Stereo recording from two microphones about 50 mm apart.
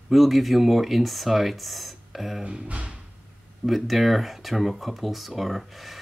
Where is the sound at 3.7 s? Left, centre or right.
Centre.